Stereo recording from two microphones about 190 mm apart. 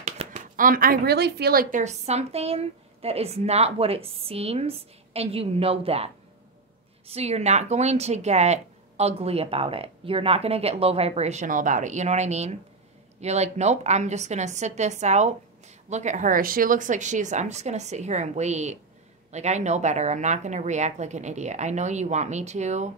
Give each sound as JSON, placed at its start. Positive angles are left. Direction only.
{"t": 0.0, "sound": "speech", "side_deg": -35}
{"t": 7.1, "sound": "speech", "side_deg": -35}